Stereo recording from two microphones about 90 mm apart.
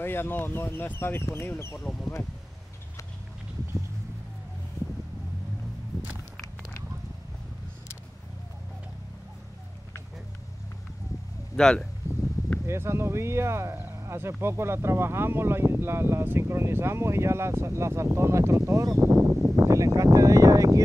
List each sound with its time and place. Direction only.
0.0 s speech: 25° left (ahead or behind)
1.8 s speech: 5° left (ahead or behind)
11.5 s speech: 5° left (ahead or behind)
12.6 s speech: 30° right (ahead or behind)